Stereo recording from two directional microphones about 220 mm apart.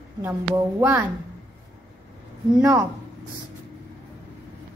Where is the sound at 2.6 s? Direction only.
15° right (ahead or behind).